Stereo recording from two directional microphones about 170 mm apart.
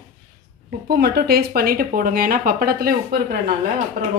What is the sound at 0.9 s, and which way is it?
Speech, 65° right (ahead or behind).